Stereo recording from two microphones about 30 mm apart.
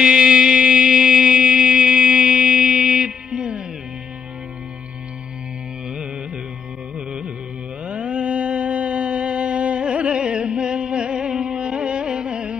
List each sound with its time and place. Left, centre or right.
0.0 s music: right
7.8 s music: right
11.4 s music: right